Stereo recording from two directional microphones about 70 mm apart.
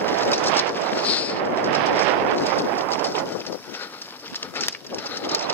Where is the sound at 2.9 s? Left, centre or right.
Left.